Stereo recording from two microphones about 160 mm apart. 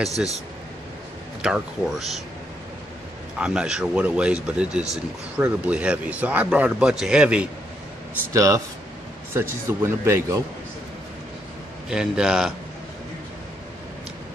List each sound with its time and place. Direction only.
0.2 s a man's voice: 5° right (ahead or behind)
1.4 s a man's voice: 5° right (ahead or behind)
3.3 s speech: 5° right (ahead or behind)
8.3 s speech: 20° right (ahead or behind)
11.9 s a man's voice: 5° right (ahead or behind)